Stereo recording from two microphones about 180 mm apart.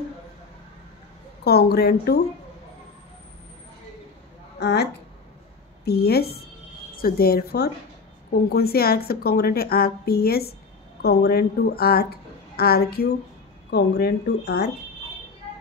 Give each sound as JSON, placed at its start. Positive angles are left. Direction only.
{"t": 1.4, "sound": "a woman's voice", "side_deg": 65}
{"t": 4.6, "sound": "a woman's voice", "side_deg": 65}
{"t": 5.9, "sound": "a woman's voice", "side_deg": 60}